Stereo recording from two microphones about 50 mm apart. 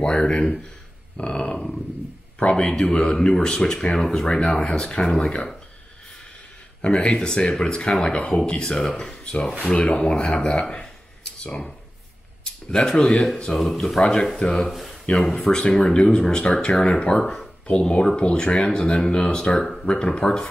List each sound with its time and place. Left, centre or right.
0.0 s speech: left
6.8 s speech: left
12.7 s speech: centre
14.7 s a sound: centre
15.1 s speech: centre